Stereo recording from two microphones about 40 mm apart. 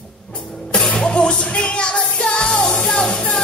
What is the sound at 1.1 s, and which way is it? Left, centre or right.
Music, left.